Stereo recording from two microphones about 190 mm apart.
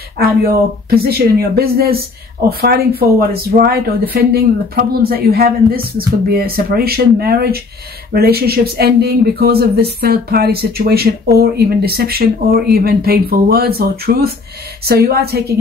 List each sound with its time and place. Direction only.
0.8 s speech: 55° right (ahead or behind)